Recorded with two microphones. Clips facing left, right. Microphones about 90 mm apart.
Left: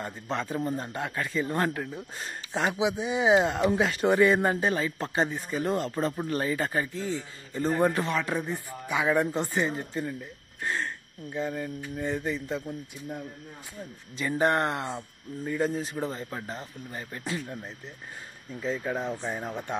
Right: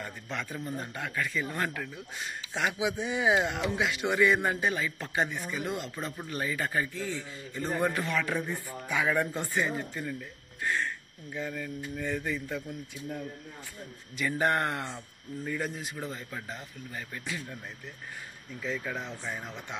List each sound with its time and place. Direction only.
0.0 s speech: 30° left (ahead or behind)
2.8 s speech: 20° left (ahead or behind)
14.1 s speech: 25° left (ahead or behind)
15.7 s speech: 35° left (ahead or behind)